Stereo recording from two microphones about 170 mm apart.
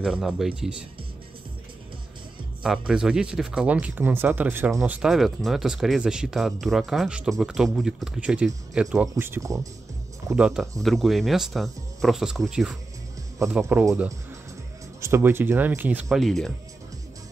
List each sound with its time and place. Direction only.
0.0 s speech: 5° right (ahead or behind)
2.6 s speech: 5° right (ahead or behind)
9.1 s speech: 15° right (ahead or behind)
10.3 s speech: 5° right (ahead or behind)